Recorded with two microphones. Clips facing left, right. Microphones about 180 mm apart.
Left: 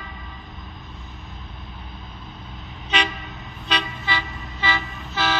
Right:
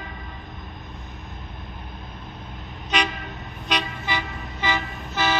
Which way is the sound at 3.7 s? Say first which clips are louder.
Even; 15° right (ahead or behind).